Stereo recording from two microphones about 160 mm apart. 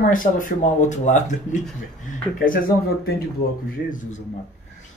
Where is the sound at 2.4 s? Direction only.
60° left (ahead or behind).